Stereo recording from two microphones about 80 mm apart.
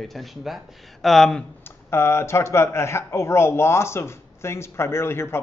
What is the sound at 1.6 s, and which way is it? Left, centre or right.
A man's voice, left.